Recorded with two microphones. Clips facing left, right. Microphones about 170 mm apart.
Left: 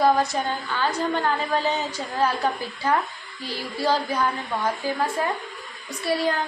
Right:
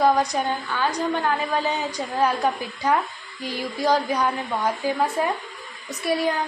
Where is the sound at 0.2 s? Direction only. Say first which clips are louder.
Right 1 dB; 15° right (ahead or behind).